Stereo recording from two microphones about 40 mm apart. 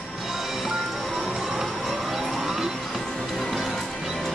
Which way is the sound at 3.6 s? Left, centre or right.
Centre.